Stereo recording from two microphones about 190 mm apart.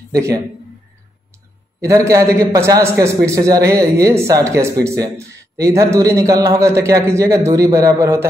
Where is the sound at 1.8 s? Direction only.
15° right (ahead or behind).